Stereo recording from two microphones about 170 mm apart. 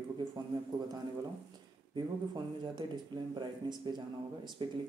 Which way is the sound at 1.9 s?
25° right (ahead or behind).